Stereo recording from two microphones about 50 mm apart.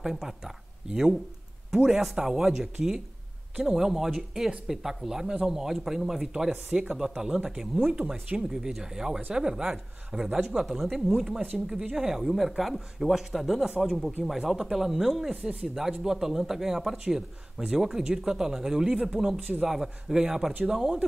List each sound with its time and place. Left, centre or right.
0.0 s speech: centre
7.8 s speech: right